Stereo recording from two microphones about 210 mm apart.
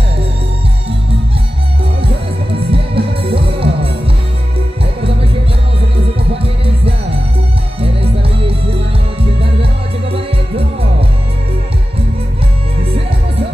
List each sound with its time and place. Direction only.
2.7 s music: 25° right (ahead or behind)
7.8 s music: 25° right (ahead or behind)